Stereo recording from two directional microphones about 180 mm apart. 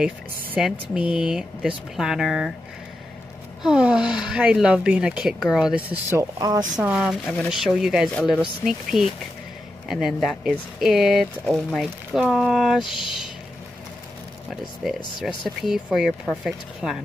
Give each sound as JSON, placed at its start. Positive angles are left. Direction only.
{"t": 0.6, "sound": "speech", "side_deg": -5}
{"t": 3.6, "sound": "speech", "side_deg": -5}
{"t": 6.8, "sound": "speech", "side_deg": -5}
{"t": 15.0, "sound": "speech", "side_deg": 25}
{"t": 15.2, "sound": "speech", "side_deg": 0}